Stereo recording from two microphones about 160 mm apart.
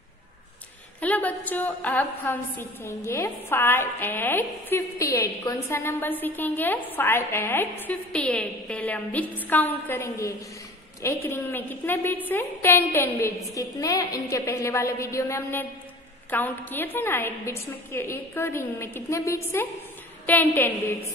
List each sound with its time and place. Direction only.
1.0 s a woman's voice: 10° left (ahead or behind)